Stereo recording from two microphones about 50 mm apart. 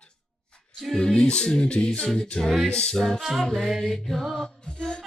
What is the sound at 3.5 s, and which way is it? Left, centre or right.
A capella, centre.